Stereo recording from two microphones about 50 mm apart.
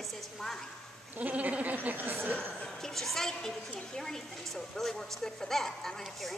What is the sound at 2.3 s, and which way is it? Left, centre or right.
Speech, left.